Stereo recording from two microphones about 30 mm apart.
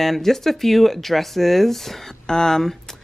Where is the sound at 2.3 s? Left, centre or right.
Centre.